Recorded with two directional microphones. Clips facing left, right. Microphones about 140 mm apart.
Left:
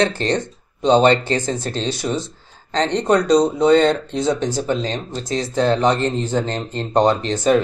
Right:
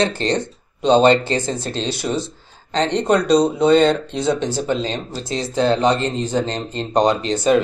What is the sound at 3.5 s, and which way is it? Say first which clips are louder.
Speech: even; 10° right (ahead or behind).